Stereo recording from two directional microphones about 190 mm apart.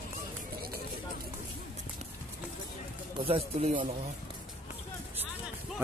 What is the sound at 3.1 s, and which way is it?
Speech, 30° right (ahead or behind).